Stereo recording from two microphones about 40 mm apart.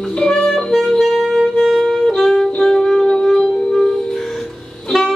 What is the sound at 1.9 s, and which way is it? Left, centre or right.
Saxophone, centre.